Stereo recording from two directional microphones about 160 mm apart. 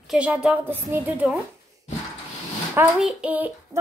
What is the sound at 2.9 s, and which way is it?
Speech, 5° right (ahead or behind).